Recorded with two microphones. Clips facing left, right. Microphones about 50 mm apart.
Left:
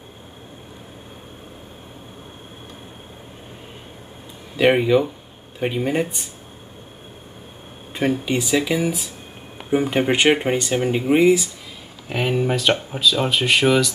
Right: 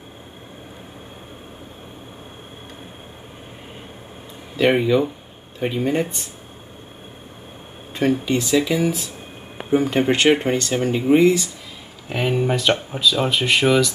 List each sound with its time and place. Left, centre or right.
4.6 s speech: centre
7.9 s speech: centre
12.1 s speech: centre